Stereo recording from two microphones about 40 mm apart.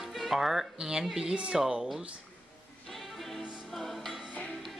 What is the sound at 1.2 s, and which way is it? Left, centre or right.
Speech, centre.